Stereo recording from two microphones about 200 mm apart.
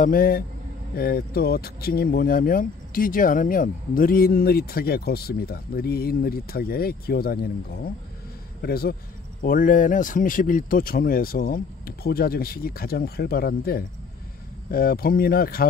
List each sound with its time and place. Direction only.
0.0 s speech: 45° left (ahead or behind)